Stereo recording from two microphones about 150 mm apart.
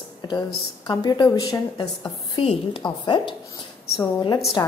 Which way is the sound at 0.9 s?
25° left (ahead or behind).